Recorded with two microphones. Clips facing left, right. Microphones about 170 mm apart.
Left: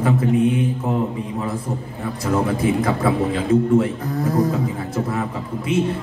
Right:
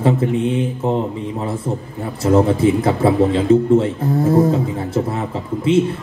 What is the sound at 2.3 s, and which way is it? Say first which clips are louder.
A man's voice: right 6 dB; 30° right (ahead or behind).